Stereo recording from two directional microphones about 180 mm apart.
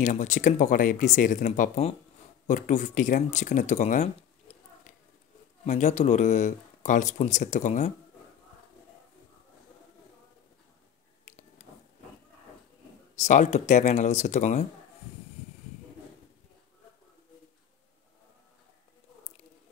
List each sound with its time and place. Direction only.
0.0 s speech: 45° left (ahead or behind)
13.1 s speech: 45° left (ahead or behind)